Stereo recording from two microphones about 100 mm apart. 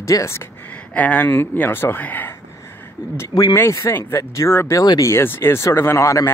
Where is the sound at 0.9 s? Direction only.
15° left (ahead or behind).